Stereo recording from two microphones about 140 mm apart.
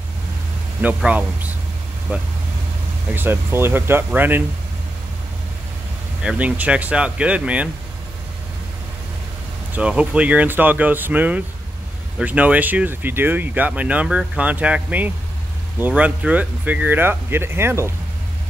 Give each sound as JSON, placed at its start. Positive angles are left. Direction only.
{"t": 0.8, "sound": "speech", "side_deg": -10}
{"t": 6.2, "sound": "speech", "side_deg": -10}
{"t": 9.8, "sound": "speech", "side_deg": -10}